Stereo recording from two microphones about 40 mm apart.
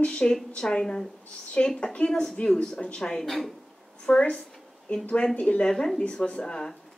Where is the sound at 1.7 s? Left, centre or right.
Left.